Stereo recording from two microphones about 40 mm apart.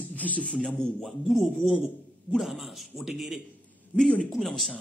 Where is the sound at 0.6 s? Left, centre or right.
Centre.